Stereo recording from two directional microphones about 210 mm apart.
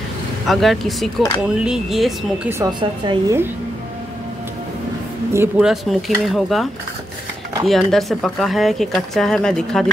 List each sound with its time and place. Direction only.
0.5 s speech: centre (ahead or behind)
2.6 s a woman's voice: 20° right (ahead or behind)
5.3 s speech: 5° right (ahead or behind)